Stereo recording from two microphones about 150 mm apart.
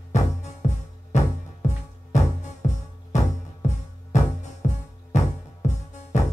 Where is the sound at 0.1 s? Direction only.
50° left (ahead or behind).